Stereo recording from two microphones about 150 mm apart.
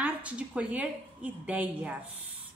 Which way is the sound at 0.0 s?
10° right (ahead or behind).